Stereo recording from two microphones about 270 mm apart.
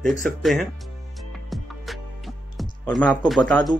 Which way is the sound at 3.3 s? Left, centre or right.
Centre.